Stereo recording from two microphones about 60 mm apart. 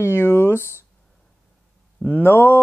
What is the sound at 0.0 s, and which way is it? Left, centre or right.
Speech, left.